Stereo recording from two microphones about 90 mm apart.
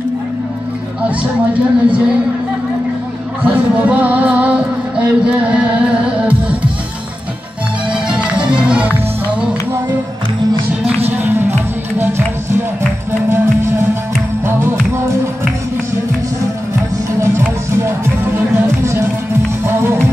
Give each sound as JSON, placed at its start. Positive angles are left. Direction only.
{"t": 1.5, "sound": "speech", "side_deg": -15}
{"t": 3.4, "sound": "music", "side_deg": -15}
{"t": 7.9, "sound": "music", "side_deg": -10}
{"t": 11.1, "sound": "music", "side_deg": -20}